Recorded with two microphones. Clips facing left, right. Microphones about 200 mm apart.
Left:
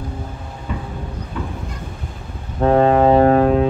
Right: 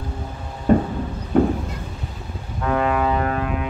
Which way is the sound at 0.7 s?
45° right (ahead or behind).